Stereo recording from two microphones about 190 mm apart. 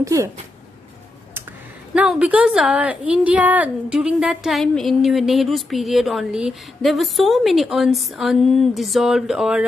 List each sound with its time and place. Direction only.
0.0 s speech: 15° right (ahead or behind)
2.0 s a woman's voice: 5° right (ahead or behind)